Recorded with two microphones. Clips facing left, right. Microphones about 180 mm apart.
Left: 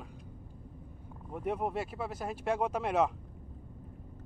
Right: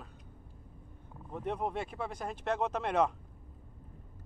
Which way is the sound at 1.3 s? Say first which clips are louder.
Left 2 dB; 10° left (ahead or behind).